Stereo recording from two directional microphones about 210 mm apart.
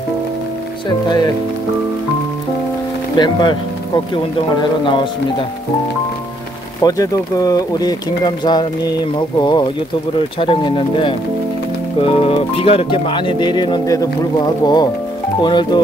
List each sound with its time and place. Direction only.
1.0 s speech: 20° left (ahead or behind)
3.2 s speech: 20° left (ahead or behind)
6.8 s speech: 15° left (ahead or behind)